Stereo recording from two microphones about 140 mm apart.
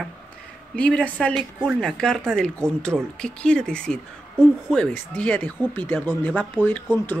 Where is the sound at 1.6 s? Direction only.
Centre (ahead or behind).